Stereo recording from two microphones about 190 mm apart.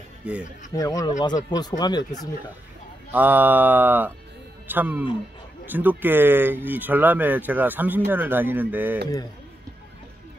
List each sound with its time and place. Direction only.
0.2 s speech: 5° right (ahead or behind)
0.7 s speech: 20° left (ahead or behind)
3.1 s speech: 10° right (ahead or behind)